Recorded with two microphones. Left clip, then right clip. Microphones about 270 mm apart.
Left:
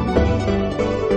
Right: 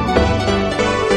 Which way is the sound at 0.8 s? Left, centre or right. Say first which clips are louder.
Right 3 dB; right.